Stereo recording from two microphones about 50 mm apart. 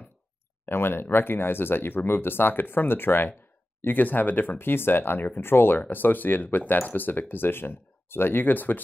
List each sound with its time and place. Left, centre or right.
0.7 s speech: left